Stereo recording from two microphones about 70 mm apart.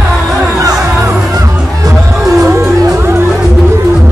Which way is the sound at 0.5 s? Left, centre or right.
Right.